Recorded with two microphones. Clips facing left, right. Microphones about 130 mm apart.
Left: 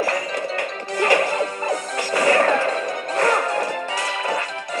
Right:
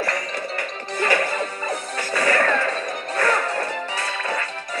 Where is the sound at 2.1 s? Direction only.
15° left (ahead or behind).